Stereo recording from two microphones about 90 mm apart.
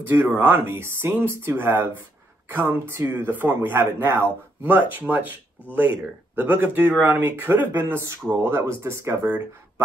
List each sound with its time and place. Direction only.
0.0 s a man's voice: 25° right (ahead or behind)